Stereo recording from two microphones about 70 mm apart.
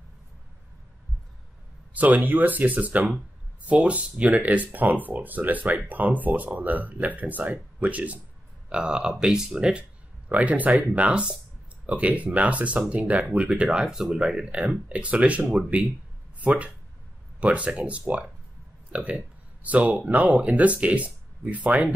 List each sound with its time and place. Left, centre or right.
2.0 s speech: right
18.9 s a sound: right
19.9 s speech: right